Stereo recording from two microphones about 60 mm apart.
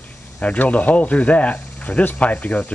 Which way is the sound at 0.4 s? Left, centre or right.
Left.